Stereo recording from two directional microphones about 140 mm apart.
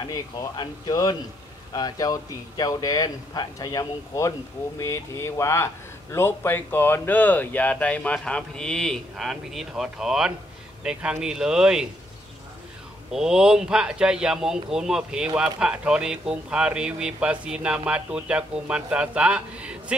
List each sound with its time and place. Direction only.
0.0 s speech: 30° left (ahead or behind); by 11.9 s 5° right (ahead or behind)
13.1 s a man's voice: 5° right (ahead or behind)